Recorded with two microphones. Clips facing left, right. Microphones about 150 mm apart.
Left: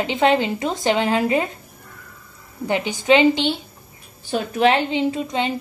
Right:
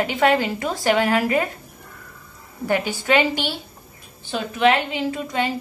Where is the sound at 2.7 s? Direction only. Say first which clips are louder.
Left 3 dB; 20° left (ahead or behind).